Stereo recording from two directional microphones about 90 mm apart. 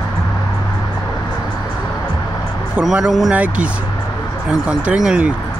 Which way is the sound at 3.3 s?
15° right (ahead or behind).